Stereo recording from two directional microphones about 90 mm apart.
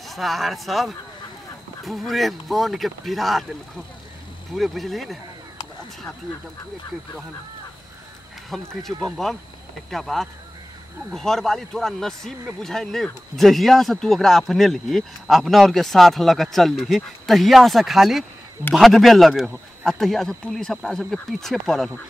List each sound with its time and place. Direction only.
0.0 s speech: centre (ahead or behind)
4.5 s speech: centre (ahead or behind)
8.5 s speech: centre (ahead or behind)